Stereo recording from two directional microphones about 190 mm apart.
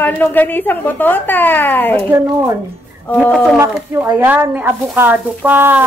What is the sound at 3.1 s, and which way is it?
Speech, 5° left (ahead or behind).